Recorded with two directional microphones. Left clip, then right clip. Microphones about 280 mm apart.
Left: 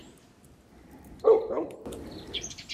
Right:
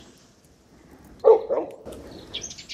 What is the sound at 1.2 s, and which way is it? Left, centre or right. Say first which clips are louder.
Dog: right 5 dB; right.